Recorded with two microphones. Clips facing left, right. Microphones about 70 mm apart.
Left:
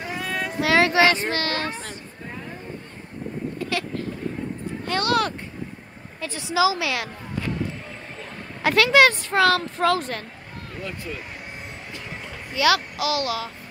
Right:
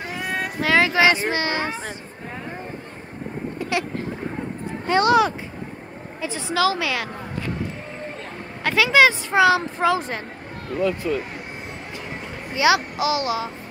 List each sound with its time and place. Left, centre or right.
0.2 s a sound: right
0.6 s a child's voice: centre
4.8 s a child's voice: right
6.2 s a woman's voice: centre
8.6 s a woman's voice: centre
12.5 s a child's voice: right